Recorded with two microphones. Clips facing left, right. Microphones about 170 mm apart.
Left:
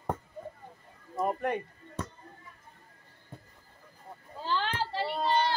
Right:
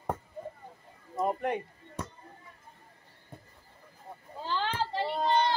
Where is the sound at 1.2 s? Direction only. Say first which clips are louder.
Even; 15° right (ahead or behind).